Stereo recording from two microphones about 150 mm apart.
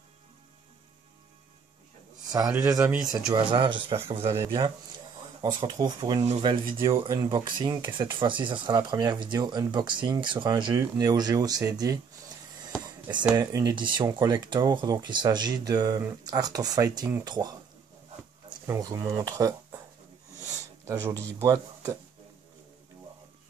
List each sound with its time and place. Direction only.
2.5 s a man's voice: 20° right (ahead or behind)
3.3 s speech: 35° right (ahead or behind)
13.3 s speech: 25° right (ahead or behind)
18.7 s speech: 25° right (ahead or behind)
20.8 s speech: 25° right (ahead or behind)